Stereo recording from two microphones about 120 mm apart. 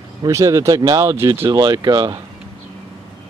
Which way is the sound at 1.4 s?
35° right (ahead or behind).